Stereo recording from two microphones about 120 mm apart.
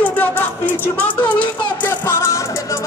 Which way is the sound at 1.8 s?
20° left (ahead or behind).